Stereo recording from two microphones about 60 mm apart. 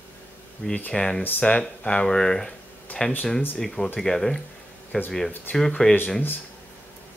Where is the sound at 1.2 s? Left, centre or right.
Left.